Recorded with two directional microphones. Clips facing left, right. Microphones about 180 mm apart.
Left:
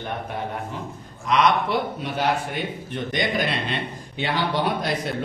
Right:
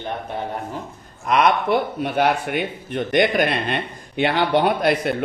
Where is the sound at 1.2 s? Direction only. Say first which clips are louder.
Right 2 dB; 55° right (ahead or behind).